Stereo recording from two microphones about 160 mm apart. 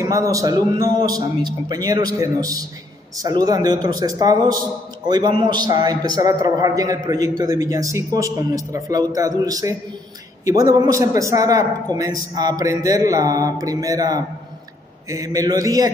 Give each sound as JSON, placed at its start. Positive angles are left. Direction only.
{"t": 0.0, "sound": "a man's voice", "side_deg": -20}